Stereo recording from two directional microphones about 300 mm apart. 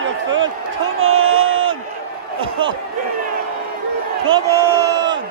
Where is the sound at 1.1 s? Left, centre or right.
Right.